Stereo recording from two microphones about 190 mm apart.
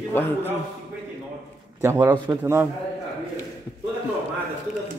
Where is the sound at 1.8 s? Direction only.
10° right (ahead or behind).